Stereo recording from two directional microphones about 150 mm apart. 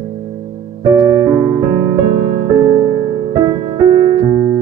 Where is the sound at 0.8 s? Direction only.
25° right (ahead or behind).